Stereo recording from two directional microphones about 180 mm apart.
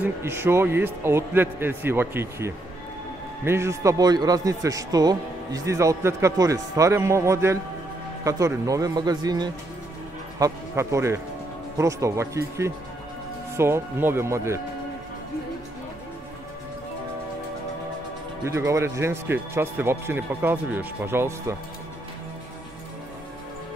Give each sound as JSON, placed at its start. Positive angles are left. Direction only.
{"t": 0.0, "sound": "a man's voice", "side_deg": -15}
{"t": 18.4, "sound": "a man's voice", "side_deg": -15}